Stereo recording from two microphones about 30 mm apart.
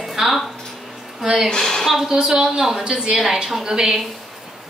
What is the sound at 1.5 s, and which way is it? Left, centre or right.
Speech, centre.